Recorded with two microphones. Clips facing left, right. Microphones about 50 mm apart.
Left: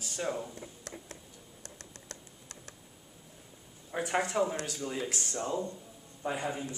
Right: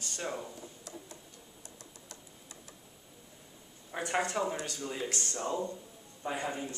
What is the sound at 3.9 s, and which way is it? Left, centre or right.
A man's voice, centre.